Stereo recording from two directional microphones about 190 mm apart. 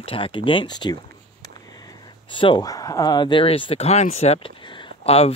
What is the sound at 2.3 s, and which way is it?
Speech, 25° left (ahead or behind).